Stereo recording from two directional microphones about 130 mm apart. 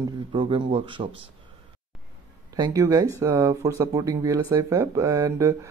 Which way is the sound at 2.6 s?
25° right (ahead or behind).